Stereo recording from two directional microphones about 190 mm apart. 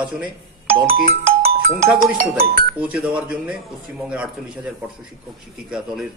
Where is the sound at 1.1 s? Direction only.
50° right (ahead or behind).